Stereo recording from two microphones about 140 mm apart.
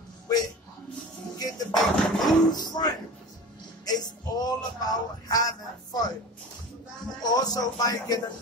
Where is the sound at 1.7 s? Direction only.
Centre (ahead or behind).